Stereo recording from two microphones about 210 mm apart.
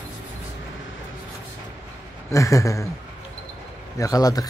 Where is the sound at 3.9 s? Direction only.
15° left (ahead or behind).